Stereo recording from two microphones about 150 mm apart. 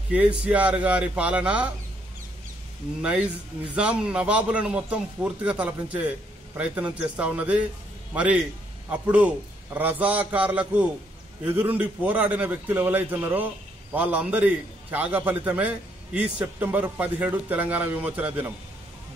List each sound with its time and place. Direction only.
0.1 s a man's voice: 10° right (ahead or behind)
3.0 s a man's voice: 10° right (ahead or behind)